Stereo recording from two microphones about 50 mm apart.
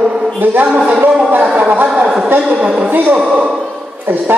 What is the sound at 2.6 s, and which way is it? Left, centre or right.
Speech, right.